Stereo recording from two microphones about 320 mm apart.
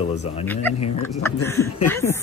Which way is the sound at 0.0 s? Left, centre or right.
Centre.